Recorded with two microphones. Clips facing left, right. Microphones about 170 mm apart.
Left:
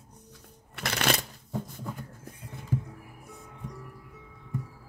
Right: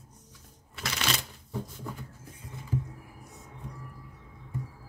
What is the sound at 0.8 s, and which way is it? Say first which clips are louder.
Shuffling cards: left 5 dB; 55° left (ahead or behind).